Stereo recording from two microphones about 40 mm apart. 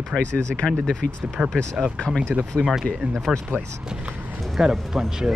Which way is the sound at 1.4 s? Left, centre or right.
Right.